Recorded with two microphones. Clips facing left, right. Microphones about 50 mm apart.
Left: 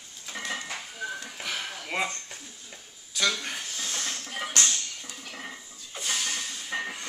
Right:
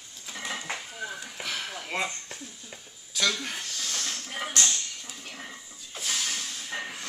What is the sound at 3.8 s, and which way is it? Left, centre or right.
Music, centre.